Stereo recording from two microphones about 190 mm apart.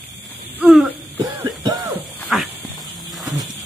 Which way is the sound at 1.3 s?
20° right (ahead or behind).